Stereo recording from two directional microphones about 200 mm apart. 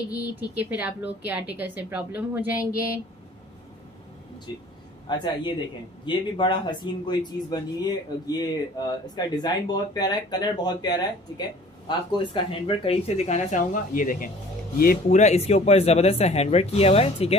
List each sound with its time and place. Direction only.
0.2 s a woman's voice: 10° right (ahead or behind)
5.0 s speech: 25° left (ahead or behind)